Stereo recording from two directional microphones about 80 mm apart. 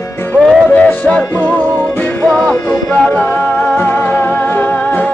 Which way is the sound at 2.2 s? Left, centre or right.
Centre.